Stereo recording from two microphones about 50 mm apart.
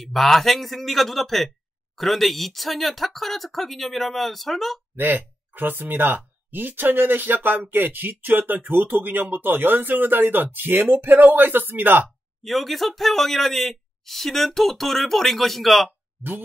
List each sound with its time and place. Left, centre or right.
0.0 s speech: centre
4.9 s speech: right
12.4 s speech: centre
16.2 s speech: right